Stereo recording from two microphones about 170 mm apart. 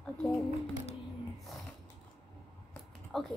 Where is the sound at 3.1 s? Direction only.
Centre (ahead or behind).